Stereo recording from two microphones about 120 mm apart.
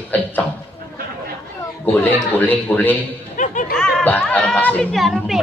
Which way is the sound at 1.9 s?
15° left (ahead or behind).